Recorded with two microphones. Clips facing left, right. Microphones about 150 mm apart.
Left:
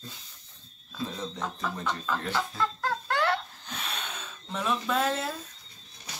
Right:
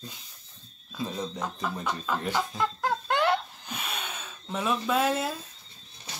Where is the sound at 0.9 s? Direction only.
15° right (ahead or behind).